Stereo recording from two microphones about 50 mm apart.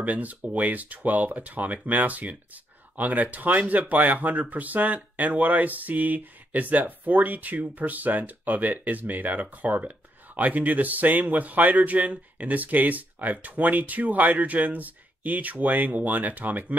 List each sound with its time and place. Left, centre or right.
0.0 s speech: right